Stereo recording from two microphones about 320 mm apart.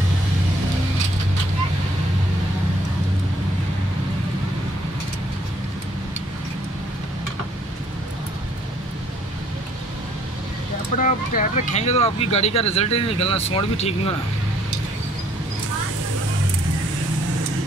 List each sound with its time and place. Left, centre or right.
11.0 s speech: left